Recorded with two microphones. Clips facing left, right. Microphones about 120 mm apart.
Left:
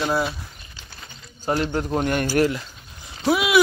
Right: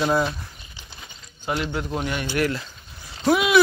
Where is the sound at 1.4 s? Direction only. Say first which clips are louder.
Left 3 dB; 40° left (ahead or behind).